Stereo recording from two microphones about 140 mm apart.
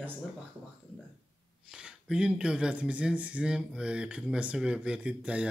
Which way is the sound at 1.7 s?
5° right (ahead or behind).